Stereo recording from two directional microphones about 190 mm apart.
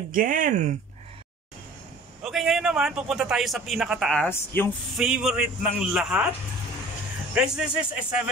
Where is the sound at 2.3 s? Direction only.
Centre (ahead or behind).